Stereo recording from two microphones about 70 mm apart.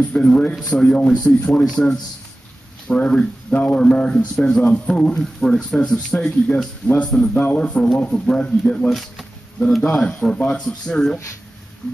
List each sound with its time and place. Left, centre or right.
0.0 s speech: centre
8.8 s speech: centre